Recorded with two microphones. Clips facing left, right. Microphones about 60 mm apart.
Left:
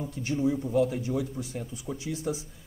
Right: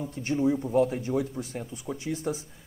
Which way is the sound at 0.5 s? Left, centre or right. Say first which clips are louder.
Right 2 dB; centre.